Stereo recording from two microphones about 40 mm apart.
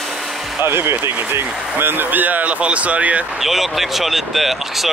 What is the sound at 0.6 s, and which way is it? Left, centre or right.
Speech, right.